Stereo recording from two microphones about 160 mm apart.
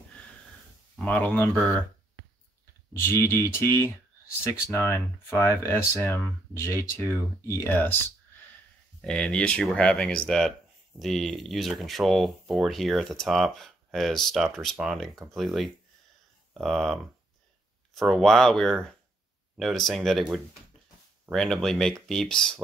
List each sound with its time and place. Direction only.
0.9 s speech: 5° left (ahead or behind)
2.9 s speech: 15° left (ahead or behind)
9.0 s speech: 5° left (ahead or behind)